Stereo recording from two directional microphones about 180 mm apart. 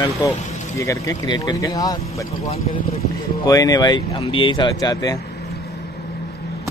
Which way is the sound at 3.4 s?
20° left (ahead or behind).